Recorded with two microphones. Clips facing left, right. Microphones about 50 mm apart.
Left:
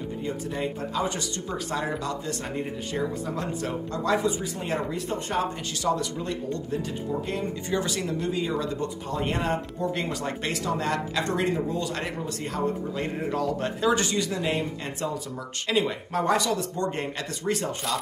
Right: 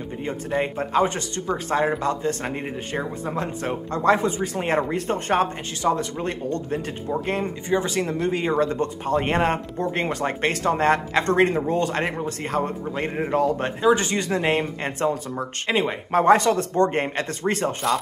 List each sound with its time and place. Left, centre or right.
0.2 s speech: right
5.8 s speech: right
7.6 s speech: right
13.7 s speech: right
14.1 s speech: right